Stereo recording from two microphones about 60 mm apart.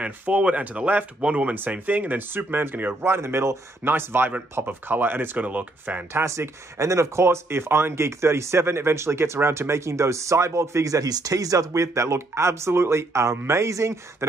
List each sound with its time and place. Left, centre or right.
0.0 s speech: right
3.1 s speech: right
6.1 s speech: right